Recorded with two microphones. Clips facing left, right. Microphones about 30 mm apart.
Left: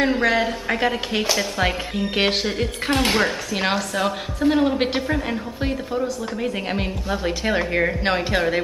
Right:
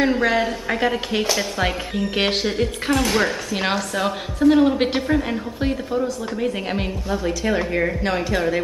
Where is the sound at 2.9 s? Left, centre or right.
Left.